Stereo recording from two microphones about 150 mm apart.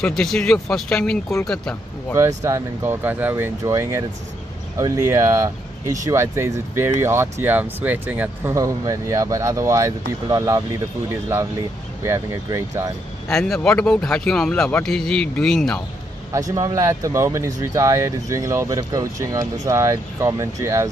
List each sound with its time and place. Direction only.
0.0 s speech: 5° left (ahead or behind)
2.1 s speech: 20° right (ahead or behind)
13.3 s speech: 5° left (ahead or behind)
16.3 s speech: 20° right (ahead or behind)